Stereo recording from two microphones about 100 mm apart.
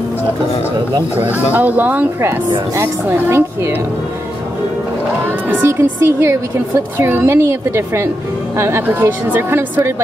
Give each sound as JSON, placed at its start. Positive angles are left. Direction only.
{"t": 1.1, "sound": "speech", "side_deg": -15}
{"t": 2.7, "sound": "speech", "side_deg": -30}
{"t": 5.2, "sound": "speech", "side_deg": -20}